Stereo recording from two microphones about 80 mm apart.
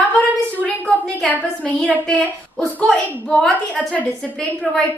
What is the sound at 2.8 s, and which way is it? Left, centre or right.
A woman's voice, centre.